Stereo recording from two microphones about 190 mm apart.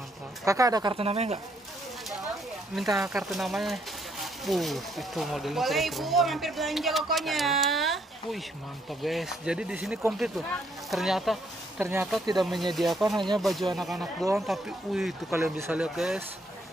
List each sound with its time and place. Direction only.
0.5 s speech: 20° right (ahead or behind); by 1.4 s 35° right (ahead or behind)
3.0 s speech: centre (ahead or behind)
11.8 s speech: 10° right (ahead or behind)
12.4 s speech: centre (ahead or behind)
15.3 s speech: 10° right (ahead or behind)